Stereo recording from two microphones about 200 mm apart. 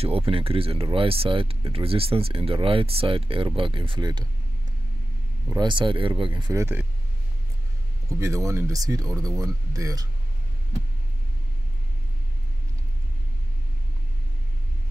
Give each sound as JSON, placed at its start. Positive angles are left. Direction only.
{"t": 0.0, "sound": "speech", "side_deg": -30}
{"t": 5.5, "sound": "speech", "side_deg": -25}
{"t": 8.2, "sound": "speech", "side_deg": -15}